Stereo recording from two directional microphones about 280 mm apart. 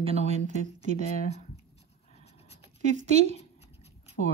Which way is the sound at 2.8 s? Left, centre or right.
Right.